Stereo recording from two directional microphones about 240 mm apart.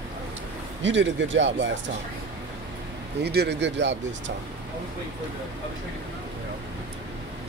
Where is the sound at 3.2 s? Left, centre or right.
Right.